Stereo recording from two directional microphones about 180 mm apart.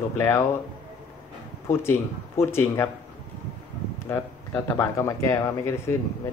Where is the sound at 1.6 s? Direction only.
15° left (ahead or behind).